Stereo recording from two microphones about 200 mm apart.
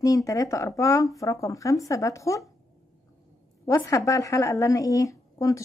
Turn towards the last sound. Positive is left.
turn(degrees=15)  # may be behind; listen again after turning